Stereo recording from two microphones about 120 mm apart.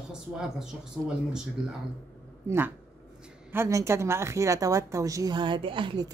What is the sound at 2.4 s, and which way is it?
A woman's voice, 20° right (ahead or behind).